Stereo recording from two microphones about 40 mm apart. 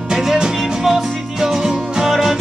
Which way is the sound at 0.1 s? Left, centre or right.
Centre.